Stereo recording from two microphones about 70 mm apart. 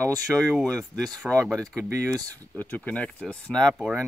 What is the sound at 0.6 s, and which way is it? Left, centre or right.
Speech, centre.